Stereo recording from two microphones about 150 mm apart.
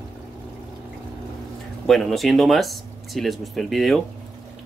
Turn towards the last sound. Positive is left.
turn(degrees=0)  # may be behind; listen again after turning